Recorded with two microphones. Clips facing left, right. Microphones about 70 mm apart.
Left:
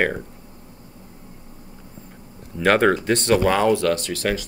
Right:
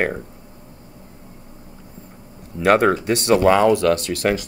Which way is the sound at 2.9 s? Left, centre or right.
Right.